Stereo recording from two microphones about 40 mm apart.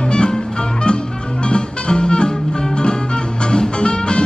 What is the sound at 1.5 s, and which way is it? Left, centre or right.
Music, left.